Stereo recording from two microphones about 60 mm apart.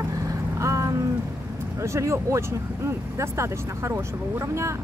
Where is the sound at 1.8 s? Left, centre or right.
Right.